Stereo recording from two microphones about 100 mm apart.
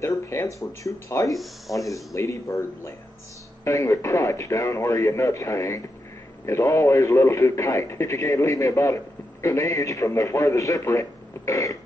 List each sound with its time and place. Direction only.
0.0 s a man's voice: 30° left (ahead or behind)